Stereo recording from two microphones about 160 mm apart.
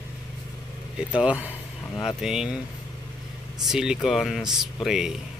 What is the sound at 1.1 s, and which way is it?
Speech, 10° right (ahead or behind).